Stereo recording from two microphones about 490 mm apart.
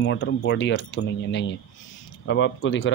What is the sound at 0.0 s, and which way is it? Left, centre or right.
Speech, left.